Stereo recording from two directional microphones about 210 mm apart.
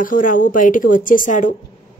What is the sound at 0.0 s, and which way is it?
Speech, 40° left (ahead or behind).